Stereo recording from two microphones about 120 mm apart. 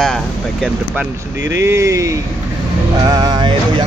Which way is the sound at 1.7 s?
25° right (ahead or behind).